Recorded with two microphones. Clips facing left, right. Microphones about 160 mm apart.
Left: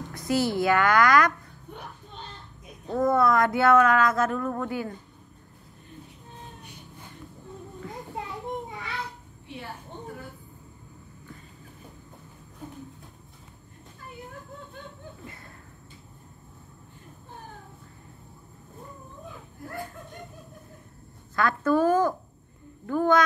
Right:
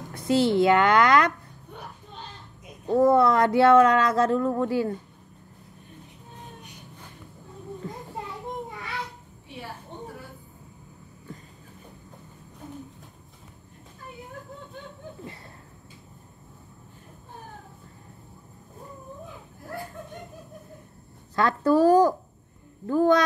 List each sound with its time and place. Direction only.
0.1 s a woman's voice: 25° right (ahead or behind)
2.9 s speech: 30° right (ahead or behind)
21.4 s speech: 35° right (ahead or behind)